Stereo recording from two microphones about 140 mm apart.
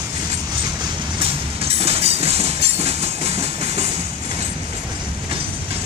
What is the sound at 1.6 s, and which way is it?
Train, 45° right (ahead or behind).